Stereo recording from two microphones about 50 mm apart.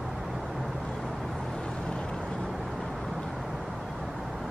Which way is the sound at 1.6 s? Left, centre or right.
Centre.